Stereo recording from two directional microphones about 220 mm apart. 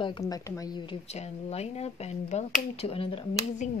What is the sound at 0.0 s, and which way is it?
A woman's voice, 20° left (ahead or behind).